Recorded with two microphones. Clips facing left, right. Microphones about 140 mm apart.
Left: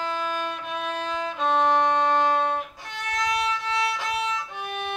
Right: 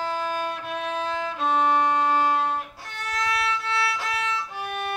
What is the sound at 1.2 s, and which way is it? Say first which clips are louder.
Music: left 2 dB; 5° right (ahead or behind).